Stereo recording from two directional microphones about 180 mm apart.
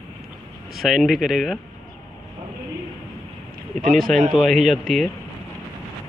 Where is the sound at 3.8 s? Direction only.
50° right (ahead or behind).